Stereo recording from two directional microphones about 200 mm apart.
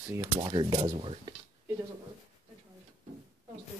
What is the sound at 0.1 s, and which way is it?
Speech, 20° right (ahead or behind).